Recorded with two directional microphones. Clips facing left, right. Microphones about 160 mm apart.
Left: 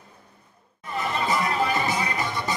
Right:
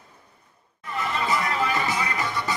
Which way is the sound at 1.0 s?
30° left (ahead or behind).